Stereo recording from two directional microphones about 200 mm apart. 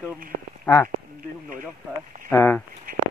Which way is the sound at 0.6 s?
10° left (ahead or behind).